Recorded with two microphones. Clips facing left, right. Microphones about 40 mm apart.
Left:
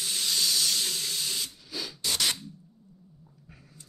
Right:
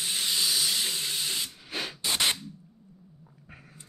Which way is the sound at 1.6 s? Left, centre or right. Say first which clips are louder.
Right 3 dB; right.